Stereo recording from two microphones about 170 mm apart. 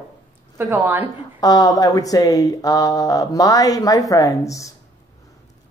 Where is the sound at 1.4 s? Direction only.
20° left (ahead or behind).